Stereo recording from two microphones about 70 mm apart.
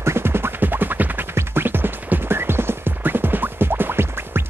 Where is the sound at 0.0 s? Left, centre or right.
Right.